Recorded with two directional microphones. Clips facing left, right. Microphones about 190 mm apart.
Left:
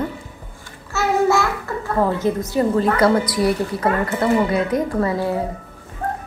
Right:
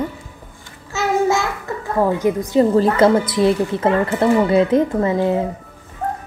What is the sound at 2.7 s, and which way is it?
Speech, 30° right (ahead or behind).